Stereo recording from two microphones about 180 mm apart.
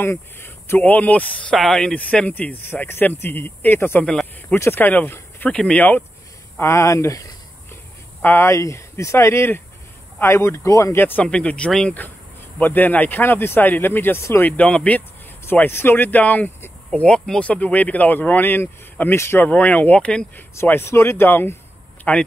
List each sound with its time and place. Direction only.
0.0 s speech: 15° left (ahead or behind)